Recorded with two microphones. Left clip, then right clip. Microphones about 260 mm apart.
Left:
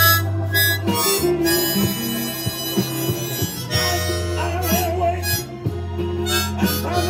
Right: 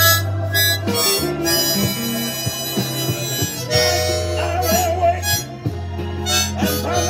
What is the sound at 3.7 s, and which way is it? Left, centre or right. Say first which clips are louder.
Harmonica: right 5 dB; centre.